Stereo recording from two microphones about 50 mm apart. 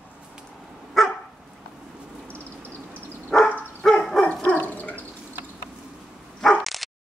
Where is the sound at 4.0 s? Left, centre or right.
Centre.